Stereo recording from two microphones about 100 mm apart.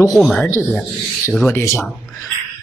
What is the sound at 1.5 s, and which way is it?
Speech, 25° left (ahead or behind).